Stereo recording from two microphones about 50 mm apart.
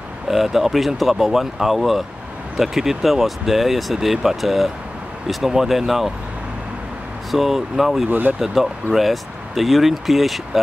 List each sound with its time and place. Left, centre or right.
0.3 s speech: centre
7.2 s speech: centre
8.1 s speech: right
8.4 s speech: centre